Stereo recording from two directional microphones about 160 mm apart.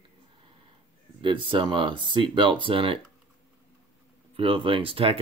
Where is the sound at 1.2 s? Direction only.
30° right (ahead or behind).